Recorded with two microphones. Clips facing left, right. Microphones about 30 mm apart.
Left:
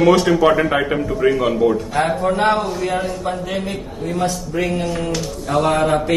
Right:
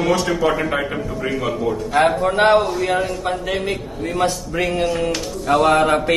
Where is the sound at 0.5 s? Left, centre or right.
Centre.